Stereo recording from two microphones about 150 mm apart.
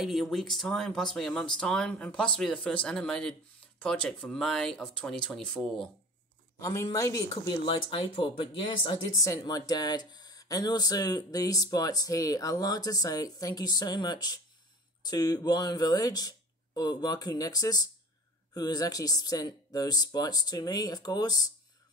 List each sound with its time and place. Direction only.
0.0 s speech: centre (ahead or behind)
6.6 s speech: 20° left (ahead or behind)
9.2 s speech: 25° left (ahead or behind)